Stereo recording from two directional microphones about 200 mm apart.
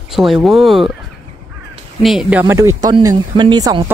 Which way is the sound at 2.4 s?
15° right (ahead or behind).